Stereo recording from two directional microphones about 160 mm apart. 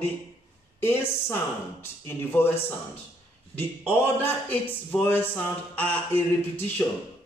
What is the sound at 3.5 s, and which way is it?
A man's voice, 15° left (ahead or behind).